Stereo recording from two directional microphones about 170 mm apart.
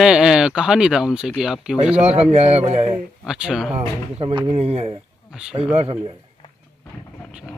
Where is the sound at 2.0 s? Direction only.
40° right (ahead or behind).